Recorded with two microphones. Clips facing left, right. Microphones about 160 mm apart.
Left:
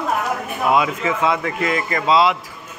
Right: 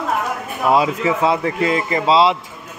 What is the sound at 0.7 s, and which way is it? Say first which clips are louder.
A man's voice: right 3 dB; 35° right (ahead or behind).